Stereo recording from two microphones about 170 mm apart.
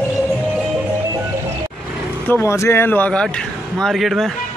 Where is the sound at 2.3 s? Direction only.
15° left (ahead or behind).